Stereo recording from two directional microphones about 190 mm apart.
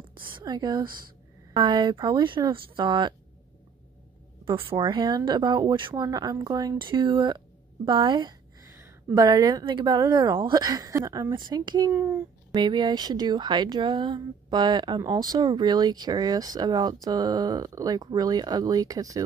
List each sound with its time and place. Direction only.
0.1 s a sound: 25° right (ahead or behind)
1.5 s speech: 25° right (ahead or behind)
4.5 s speech: 25° right (ahead or behind)